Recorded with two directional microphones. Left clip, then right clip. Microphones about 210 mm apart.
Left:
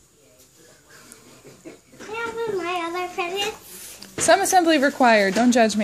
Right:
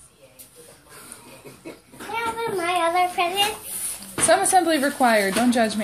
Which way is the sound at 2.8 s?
15° right (ahead or behind).